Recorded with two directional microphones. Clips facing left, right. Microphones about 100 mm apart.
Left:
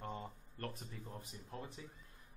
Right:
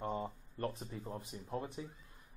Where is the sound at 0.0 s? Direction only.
20° right (ahead or behind).